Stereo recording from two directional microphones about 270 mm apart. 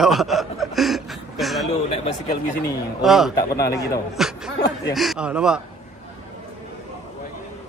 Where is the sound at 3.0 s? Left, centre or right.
Centre.